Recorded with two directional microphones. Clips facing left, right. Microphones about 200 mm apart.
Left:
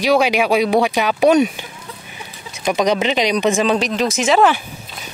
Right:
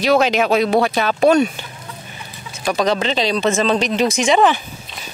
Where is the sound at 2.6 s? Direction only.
20° left (ahead or behind).